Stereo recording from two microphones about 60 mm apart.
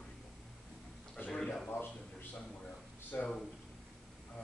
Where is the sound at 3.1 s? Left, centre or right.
Left.